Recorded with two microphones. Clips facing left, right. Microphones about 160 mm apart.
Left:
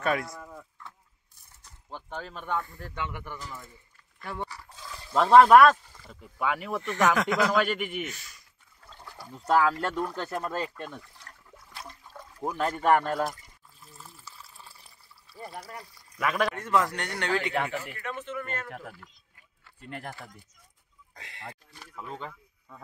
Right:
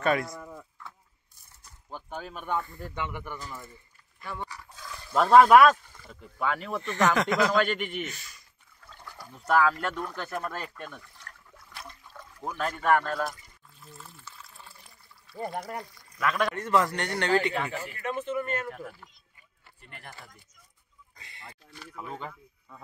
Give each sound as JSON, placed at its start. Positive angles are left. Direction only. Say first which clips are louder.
{"t": 0.0, "sound": "speech", "louder": "right 2 dB", "side_deg": 5}
{"t": 0.3, "sound": "a sound", "louder": "right 2 dB", "side_deg": -5}
{"t": 1.9, "sound": "speech", "louder": "even", "side_deg": -5}
{"t": 4.8, "sound": "speech", "louder": "even", "side_deg": -5}
{"t": 9.3, "sound": "speech", "louder": "even", "side_deg": 30}
{"t": 12.4, "sound": "speech", "louder": "left 3 dB", "side_deg": 25}
{"t": 13.7, "sound": "water", "louder": "right 2 dB", "side_deg": 0}
{"t": 14.7, "sound": "liquid", "louder": "right 1 dB", "side_deg": 30}
{"t": 15.3, "sound": "speech", "louder": "right 7 dB", "side_deg": -50}
{"t": 16.2, "sound": "a man's voice", "louder": "even", "side_deg": 10}
{"t": 18.2, "sound": "speech", "louder": "right 5 dB", "side_deg": -15}
{"t": 19.8, "sound": "speech", "louder": "left 9 dB", "side_deg": 70}
{"t": 21.1, "sound": "speech", "louder": "left 6 dB", "side_deg": 90}
{"t": 21.9, "sound": "speech", "louder": "even", "side_deg": -10}